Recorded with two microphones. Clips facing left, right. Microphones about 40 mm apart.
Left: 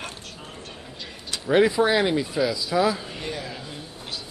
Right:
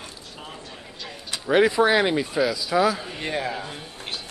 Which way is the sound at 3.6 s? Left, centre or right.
Right.